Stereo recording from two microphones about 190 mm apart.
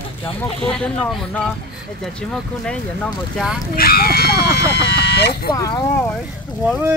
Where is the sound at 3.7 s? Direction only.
50° left (ahead or behind).